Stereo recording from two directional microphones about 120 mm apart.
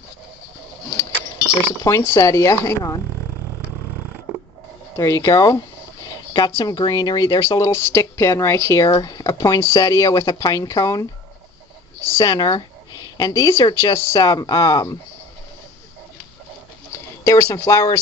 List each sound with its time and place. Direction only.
1.8 s speech: 25° left (ahead or behind)
4.9 s speech: 25° left (ahead or behind)
6.0 s a sound: 35° left (ahead or behind)
6.6 s speech: 35° left (ahead or behind)
14.2 s speech: 35° left (ahead or behind)
16.9 s speech: 20° left (ahead or behind)